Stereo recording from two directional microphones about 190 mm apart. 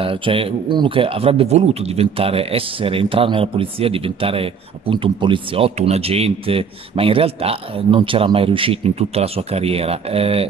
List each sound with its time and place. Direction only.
0.0 s speech: 30° right (ahead or behind)